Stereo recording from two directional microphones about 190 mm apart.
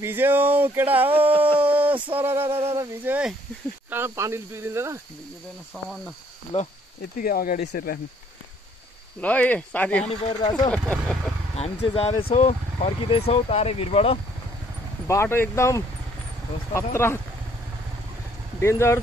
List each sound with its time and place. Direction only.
0.0 s speech: 10° right (ahead or behind)
6.5 s speech: 35° left (ahead or behind)
7.2 s speech: 50° left (ahead or behind)
9.2 s speech: 10° left (ahead or behind)
11.5 s speech: 35° left (ahead or behind)
15.0 s speech: 15° left (ahead or behind)
18.6 s speech: 15° left (ahead or behind)